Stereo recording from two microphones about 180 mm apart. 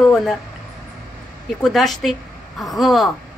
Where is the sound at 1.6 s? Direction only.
Centre (ahead or behind).